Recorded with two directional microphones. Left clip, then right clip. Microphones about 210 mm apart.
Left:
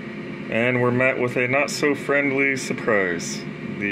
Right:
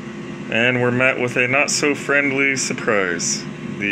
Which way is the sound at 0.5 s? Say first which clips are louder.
Right 3 dB; 5° left (ahead or behind).